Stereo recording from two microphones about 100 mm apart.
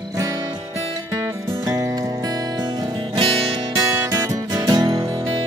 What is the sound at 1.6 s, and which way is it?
Music, 35° right (ahead or behind).